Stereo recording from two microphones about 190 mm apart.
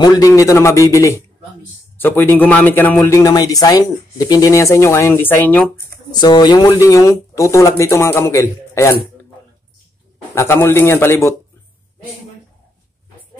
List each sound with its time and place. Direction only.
0.0 s speech: 20° left (ahead or behind)
6.2 s speech: 20° left (ahead or behind)
10.3 s speech: 15° left (ahead or behind)